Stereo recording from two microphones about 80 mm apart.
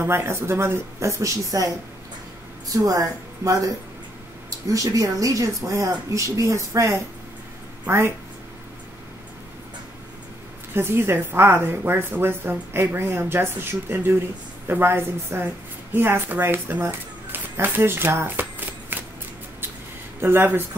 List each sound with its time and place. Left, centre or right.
0.0 s speech: right
2.7 s speech: right
10.7 s a woman's voice: right
20.2 s a woman's voice: right